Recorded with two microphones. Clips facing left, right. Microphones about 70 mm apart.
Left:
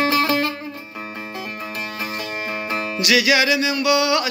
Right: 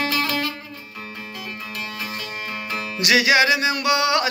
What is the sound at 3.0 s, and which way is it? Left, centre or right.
Music, right.